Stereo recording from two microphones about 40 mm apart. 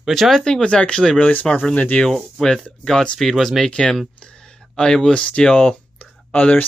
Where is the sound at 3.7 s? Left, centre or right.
Centre.